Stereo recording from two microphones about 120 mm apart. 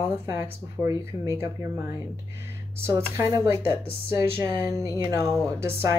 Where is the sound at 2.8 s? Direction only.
25° right (ahead or behind).